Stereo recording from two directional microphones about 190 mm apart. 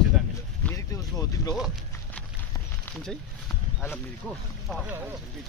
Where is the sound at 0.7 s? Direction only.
15° left (ahead or behind).